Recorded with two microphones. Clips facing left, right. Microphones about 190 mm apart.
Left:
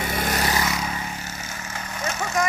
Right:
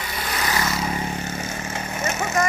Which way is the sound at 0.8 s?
30° right (ahead or behind).